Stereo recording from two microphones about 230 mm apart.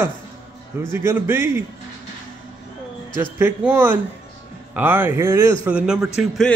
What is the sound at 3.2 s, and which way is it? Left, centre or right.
A man's voice, centre.